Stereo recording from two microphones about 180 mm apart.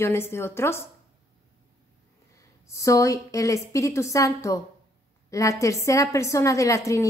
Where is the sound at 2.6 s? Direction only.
15° left (ahead or behind).